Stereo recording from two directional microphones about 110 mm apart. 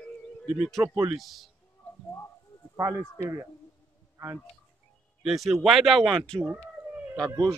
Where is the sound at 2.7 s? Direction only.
30° right (ahead or behind).